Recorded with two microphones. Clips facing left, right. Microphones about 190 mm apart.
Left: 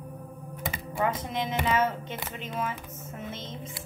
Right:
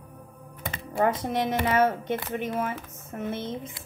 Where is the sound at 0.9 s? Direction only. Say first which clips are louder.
Right 5 dB; 60° right (ahead or behind).